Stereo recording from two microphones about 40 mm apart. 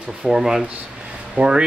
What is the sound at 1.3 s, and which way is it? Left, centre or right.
Speech, right.